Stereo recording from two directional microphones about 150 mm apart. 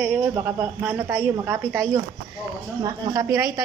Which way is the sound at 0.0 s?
15° right (ahead or behind).